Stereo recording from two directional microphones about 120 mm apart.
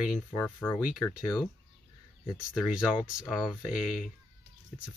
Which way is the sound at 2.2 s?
Centre (ahead or behind).